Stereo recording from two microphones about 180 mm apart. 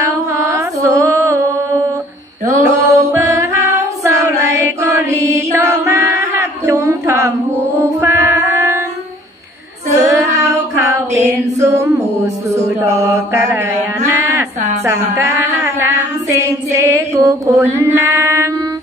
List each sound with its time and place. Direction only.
0.0 s music: 15° right (ahead or behind)
6.6 s a sound: 15° right (ahead or behind)
7.8 s music: 20° right (ahead or behind)
10.0 s female singing: 15° right (ahead or behind)
15.1 s female singing: 15° right (ahead or behind)